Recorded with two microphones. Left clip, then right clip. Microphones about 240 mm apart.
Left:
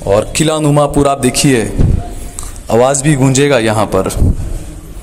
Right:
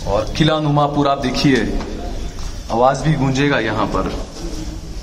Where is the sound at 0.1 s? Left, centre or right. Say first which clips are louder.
Left 5 dB; left.